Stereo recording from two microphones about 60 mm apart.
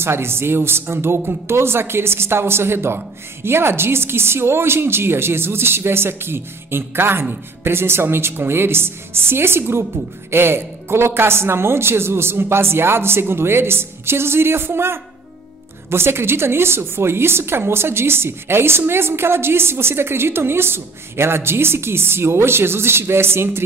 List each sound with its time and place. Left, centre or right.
0.0 s a woman's voice: right